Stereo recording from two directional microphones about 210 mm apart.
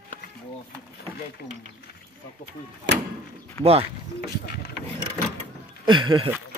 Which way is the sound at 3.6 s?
30° right (ahead or behind).